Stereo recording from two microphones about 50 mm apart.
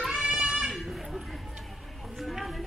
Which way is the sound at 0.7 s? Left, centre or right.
Centre.